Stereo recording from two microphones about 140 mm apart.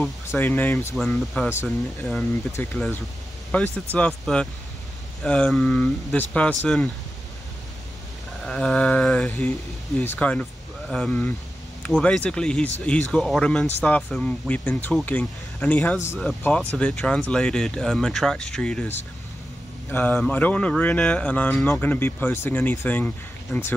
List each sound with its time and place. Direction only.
0.3 s speech: 15° left (ahead or behind)
0.9 s speech: centre (ahead or behind)
1.5 s speech: 20° left (ahead or behind)
8.5 s speech: 5° left (ahead or behind)
19.9 s speech: 10° left (ahead or behind)